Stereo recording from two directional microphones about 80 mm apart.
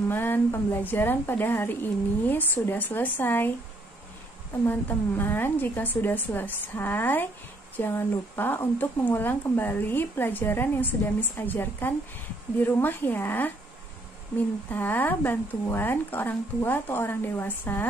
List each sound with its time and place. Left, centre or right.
0.1 s speech: left
4.6 s speech: left
14.7 s speech: left